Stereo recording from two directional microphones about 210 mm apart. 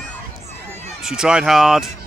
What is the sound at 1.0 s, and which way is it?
Speech, 5° right (ahead or behind).